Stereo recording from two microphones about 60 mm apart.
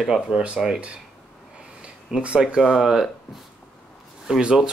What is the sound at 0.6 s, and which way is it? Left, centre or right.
Speech, centre.